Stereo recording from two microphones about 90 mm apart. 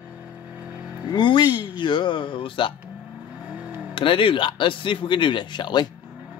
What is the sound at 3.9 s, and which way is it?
Speech, 70° left (ahead or behind).